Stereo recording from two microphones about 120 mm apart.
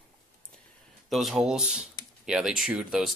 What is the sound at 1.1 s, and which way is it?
Speech, centre (ahead or behind).